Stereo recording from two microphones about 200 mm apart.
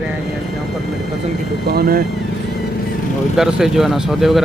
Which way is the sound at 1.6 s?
50° right (ahead or behind).